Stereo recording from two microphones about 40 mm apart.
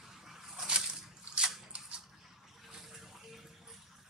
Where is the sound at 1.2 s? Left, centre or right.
Right.